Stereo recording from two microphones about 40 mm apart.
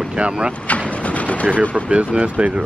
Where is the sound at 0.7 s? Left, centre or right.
Left.